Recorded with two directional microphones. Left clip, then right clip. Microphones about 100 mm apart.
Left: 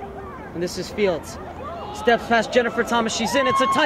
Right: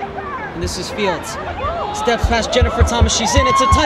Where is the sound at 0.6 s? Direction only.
35° right (ahead or behind).